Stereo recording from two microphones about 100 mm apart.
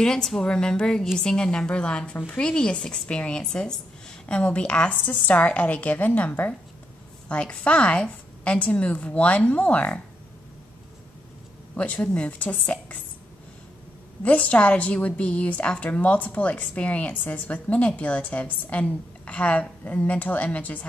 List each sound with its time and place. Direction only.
0.0 s a woman's voice: 5° left (ahead or behind)
11.7 s a woman's voice: 15° left (ahead or behind)
14.2 s a woman's voice: 15° left (ahead or behind)